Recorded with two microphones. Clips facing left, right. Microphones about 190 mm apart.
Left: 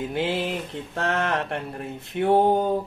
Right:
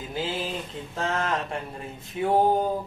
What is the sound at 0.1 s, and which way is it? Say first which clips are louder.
Speech: left 1 dB; 65° left (ahead or behind).